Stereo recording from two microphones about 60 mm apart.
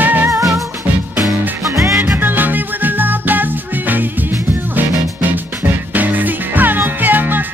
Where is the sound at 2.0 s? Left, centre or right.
Right.